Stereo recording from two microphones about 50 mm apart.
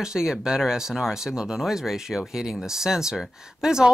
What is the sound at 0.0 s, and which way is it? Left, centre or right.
Speech, centre.